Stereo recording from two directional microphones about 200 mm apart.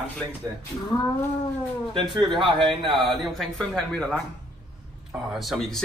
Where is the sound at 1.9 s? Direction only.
25° right (ahead or behind).